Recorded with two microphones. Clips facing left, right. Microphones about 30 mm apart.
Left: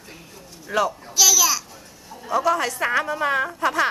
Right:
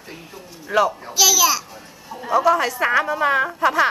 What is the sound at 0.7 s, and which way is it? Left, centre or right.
A child's voice, centre.